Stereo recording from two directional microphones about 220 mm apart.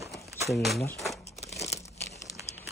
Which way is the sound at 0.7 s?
Centre (ahead or behind).